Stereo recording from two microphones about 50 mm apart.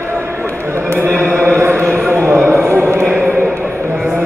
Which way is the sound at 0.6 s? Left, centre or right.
Right.